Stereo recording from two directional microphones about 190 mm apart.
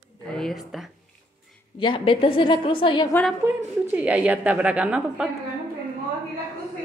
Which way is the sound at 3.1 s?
5° left (ahead or behind).